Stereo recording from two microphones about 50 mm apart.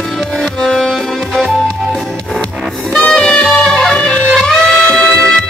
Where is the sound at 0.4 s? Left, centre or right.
Centre.